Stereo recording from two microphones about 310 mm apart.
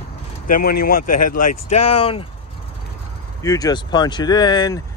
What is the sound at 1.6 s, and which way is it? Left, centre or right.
Speech, left.